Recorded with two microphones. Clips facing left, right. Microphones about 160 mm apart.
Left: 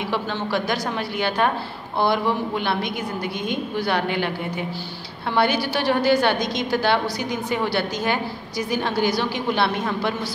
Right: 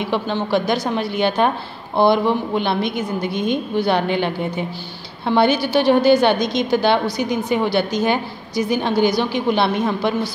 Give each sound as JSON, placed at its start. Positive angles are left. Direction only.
{"t": 0.1, "sound": "a woman's voice", "side_deg": -20}
{"t": 5.3, "sound": "a woman's voice", "side_deg": -20}